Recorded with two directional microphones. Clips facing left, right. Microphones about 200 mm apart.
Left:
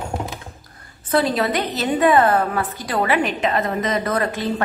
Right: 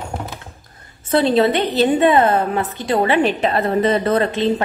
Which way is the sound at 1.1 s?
25° right (ahead or behind).